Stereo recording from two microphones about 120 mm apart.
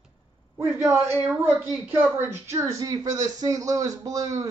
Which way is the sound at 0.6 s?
20° right (ahead or behind).